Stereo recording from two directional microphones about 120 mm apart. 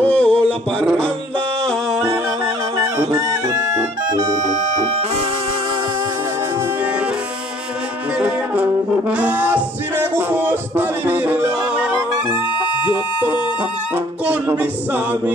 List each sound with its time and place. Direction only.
0.0 s music: 10° left (ahead or behind)
3.2 s music: 30° right (ahead or behind)
9.1 s music: 10° right (ahead or behind)